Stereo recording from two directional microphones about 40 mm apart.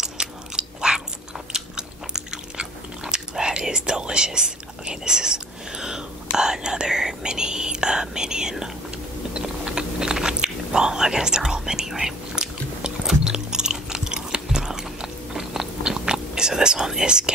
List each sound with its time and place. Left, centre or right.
0.0 s biting: centre
6.3 s speech: centre
9.3 s typing: centre